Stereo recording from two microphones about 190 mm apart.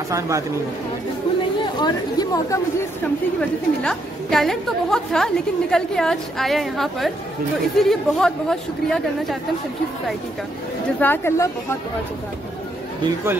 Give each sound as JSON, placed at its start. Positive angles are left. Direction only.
{"t": 1.6, "sound": "speech", "side_deg": 20}
{"t": 3.3, "sound": "a woman's voice", "side_deg": 5}
{"t": 11.0, "sound": "speech", "side_deg": 10}
{"t": 13.0, "sound": "speech", "side_deg": -15}